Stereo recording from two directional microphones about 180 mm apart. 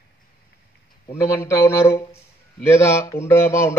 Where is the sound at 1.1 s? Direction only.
15° left (ahead or behind).